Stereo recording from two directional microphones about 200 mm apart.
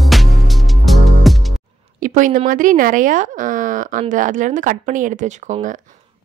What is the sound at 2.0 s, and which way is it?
Speech, 40° right (ahead or behind).